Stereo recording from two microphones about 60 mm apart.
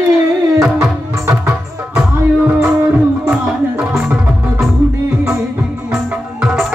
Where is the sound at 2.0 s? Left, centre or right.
Centre.